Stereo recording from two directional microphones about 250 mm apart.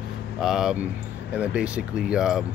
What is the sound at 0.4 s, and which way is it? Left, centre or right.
Speech, centre.